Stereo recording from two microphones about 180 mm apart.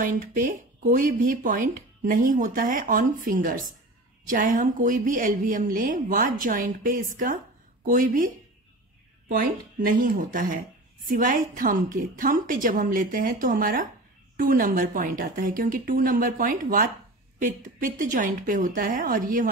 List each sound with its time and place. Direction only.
0.0 s speech: 45° right (ahead or behind)
9.3 s speech: 50° right (ahead or behind)